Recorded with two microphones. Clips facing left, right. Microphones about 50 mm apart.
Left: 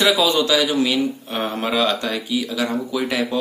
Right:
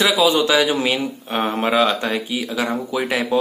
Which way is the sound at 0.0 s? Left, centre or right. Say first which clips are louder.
Right 1 dB; centre.